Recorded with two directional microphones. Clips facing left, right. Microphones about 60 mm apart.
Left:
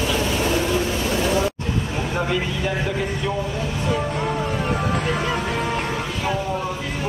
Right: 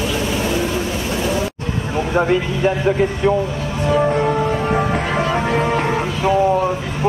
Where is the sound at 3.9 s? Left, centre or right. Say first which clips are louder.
Right 9 dB; right.